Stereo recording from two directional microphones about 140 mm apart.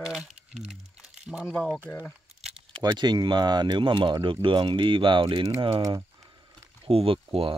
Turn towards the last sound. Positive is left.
turn(degrees=-40)  # may be behind; listen again after turning